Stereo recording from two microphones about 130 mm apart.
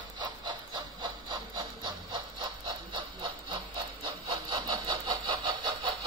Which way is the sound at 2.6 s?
35° right (ahead or behind).